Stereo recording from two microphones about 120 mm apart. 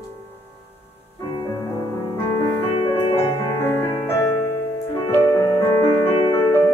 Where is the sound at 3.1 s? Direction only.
20° left (ahead or behind).